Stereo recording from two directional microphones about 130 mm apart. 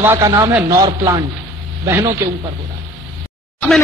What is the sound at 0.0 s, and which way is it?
Speech, 15° right (ahead or behind).